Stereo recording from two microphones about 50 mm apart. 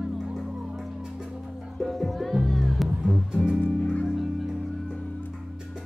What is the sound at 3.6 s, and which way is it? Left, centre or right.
Music, left.